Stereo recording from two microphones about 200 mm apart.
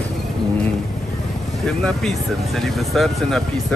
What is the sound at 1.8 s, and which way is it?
Speech, 5° left (ahead or behind).